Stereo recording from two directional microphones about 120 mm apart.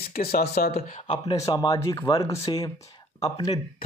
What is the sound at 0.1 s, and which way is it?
Speech, 80° left.